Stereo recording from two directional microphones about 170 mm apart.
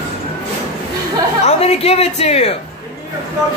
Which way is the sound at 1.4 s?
40° left (ahead or behind).